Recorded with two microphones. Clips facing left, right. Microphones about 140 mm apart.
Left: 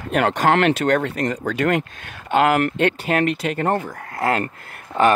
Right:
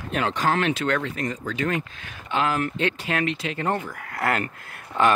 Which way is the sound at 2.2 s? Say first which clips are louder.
Left 7 dB; 60° left (ahead or behind).